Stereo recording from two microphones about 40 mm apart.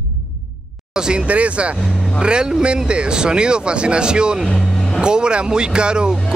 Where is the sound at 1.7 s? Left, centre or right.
Centre.